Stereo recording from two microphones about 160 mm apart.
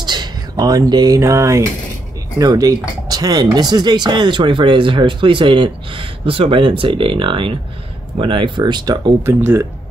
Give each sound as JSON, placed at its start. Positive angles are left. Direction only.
{"t": 0.0, "sound": "speech", "side_deg": -25}